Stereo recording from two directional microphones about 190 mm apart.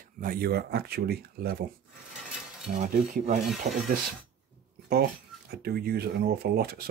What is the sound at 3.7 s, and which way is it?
Speech, 35° right (ahead or behind).